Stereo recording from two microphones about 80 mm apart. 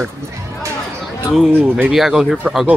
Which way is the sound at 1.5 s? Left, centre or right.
Right.